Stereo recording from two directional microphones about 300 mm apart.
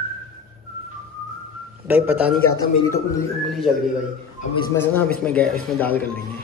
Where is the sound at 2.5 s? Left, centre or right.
Centre.